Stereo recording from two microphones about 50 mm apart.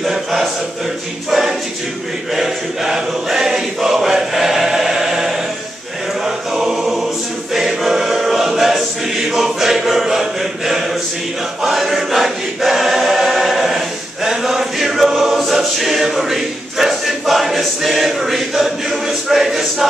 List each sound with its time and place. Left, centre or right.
0.0 s music: centre
2.3 s choir: centre
11.6 s choir: centre